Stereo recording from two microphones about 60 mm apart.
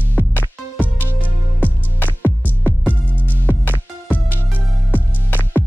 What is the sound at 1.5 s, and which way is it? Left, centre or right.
Music, left.